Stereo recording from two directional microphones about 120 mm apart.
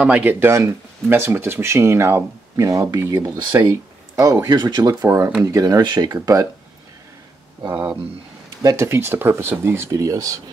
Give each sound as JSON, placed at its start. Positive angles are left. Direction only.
{"t": 0.0, "sound": "speech", "side_deg": -10}
{"t": 7.6, "sound": "speech", "side_deg": -10}